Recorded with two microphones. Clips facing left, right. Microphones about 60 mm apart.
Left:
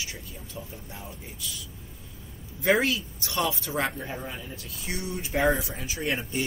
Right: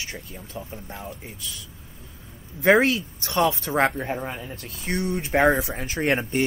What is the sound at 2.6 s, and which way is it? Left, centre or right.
Speech, right.